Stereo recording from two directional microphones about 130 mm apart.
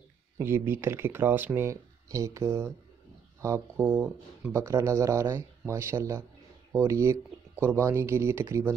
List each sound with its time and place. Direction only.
0.4 s speech: 20° right (ahead or behind)